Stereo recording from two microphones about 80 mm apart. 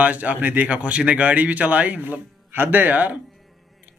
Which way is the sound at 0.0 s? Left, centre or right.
Centre.